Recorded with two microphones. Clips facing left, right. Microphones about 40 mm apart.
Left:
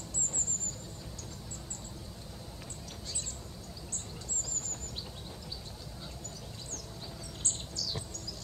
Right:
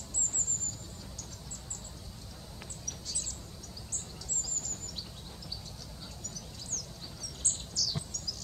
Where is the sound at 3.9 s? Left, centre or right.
Left.